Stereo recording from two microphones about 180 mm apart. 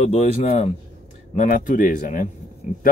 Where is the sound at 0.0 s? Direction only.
35° left (ahead or behind).